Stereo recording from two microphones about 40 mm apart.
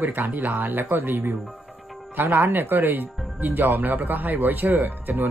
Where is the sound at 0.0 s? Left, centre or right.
Right.